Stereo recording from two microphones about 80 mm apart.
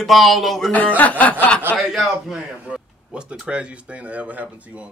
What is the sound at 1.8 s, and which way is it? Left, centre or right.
A man's voice, centre.